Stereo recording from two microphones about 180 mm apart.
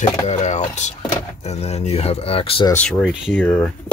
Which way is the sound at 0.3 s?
40° left (ahead or behind).